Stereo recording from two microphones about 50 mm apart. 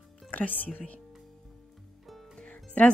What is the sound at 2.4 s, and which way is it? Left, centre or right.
Music, left.